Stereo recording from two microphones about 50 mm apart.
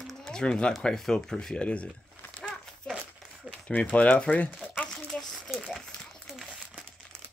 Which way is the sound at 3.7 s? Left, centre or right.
Left.